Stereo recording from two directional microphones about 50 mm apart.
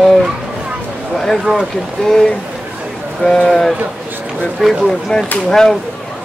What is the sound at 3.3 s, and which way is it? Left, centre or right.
Speech, centre.